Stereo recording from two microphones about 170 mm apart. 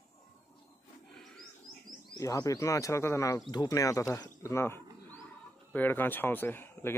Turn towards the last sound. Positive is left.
turn(degrees=15)  # may be behind; listen again after turning